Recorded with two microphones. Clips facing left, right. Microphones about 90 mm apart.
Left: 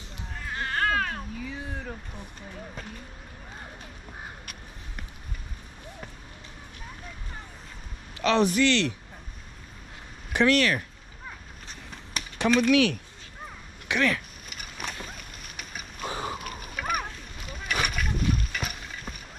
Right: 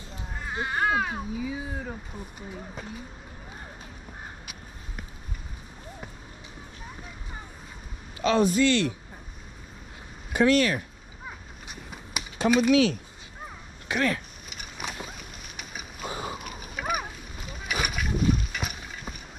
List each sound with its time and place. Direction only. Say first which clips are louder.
0.3 s speech: right 1 dB; 15° right (ahead or behind)
8.2 s a man's voice: even; 65° left (ahead or behind)
10.3 s speech: right 1 dB; 65° left (ahead or behind)
11.2 s a sound: right 1 dB; 10° right (ahead or behind)
12.4 s speech: right 1 dB; 15° right (ahead or behind)
13.8 s speech: left 1 dB; 80° left
14.6 s a sound: right 1 dB; 5° right (ahead or behind)
16.3 s boat: left 1 dB; centre (ahead or behind)